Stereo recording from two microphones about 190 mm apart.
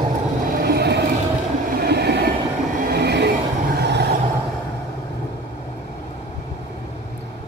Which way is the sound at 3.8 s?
60° right (ahead or behind).